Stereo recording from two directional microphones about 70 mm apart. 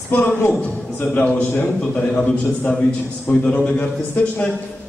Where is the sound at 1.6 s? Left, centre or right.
Centre.